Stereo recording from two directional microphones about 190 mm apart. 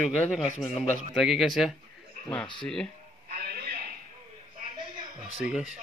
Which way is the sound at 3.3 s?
55° right (ahead or behind).